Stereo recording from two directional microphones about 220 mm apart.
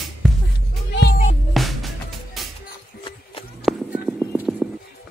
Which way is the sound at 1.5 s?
Centre (ahead or behind).